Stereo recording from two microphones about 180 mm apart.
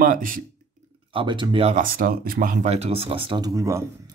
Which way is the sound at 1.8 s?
50° right (ahead or behind).